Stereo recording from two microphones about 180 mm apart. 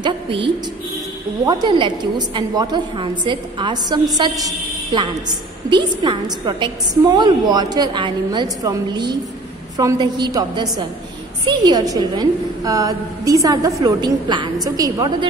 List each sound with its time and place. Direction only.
0.0 s a woman's voice: 25° right (ahead or behind)